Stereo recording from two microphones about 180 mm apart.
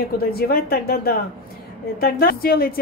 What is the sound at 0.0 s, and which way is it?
A woman's voice, 60° left (ahead or behind).